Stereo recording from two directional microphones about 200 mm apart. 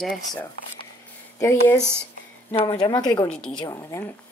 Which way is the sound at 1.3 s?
15° left (ahead or behind).